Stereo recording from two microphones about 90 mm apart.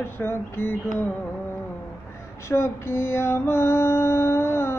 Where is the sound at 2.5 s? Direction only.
30° left (ahead or behind).